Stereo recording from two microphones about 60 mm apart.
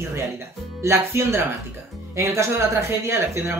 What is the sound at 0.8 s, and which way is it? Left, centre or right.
Speech, right.